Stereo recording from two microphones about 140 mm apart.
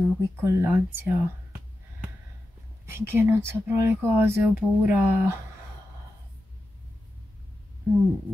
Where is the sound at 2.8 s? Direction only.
15° right (ahead or behind).